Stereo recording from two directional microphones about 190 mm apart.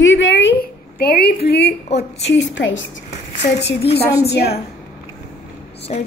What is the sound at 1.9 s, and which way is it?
Speech, 70° left (ahead or behind).